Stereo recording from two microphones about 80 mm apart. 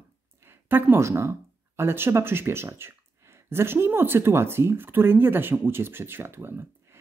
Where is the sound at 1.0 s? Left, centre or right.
Right.